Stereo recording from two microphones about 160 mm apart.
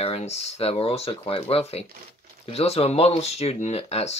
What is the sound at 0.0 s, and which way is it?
Speech, 40° left (ahead or behind).